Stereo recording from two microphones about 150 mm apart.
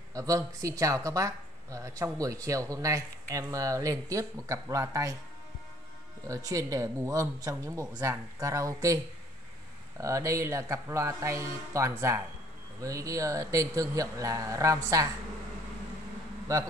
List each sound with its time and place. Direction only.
0.1 s speech: 20° right (ahead or behind)
6.2 s speech: 20° right (ahead or behind)
16.5 s speech: 25° right (ahead or behind)